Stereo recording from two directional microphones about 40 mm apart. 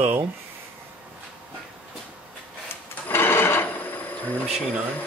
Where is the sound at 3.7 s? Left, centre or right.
Left.